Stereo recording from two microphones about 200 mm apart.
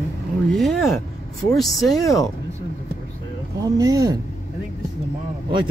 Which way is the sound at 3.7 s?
15° right (ahead or behind).